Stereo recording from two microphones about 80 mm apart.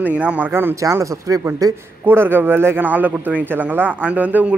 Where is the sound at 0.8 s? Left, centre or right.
Right.